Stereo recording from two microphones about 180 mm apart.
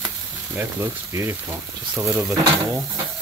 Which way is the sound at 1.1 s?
15° right (ahead or behind).